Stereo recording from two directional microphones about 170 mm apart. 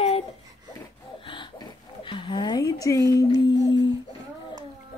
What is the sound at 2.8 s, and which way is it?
Speech, 20° left (ahead or behind).